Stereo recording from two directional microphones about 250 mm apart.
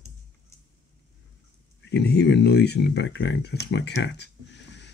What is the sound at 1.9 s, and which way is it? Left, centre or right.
Speech, left.